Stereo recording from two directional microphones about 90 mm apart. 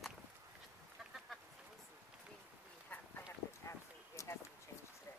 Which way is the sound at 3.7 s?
30° left (ahead or behind).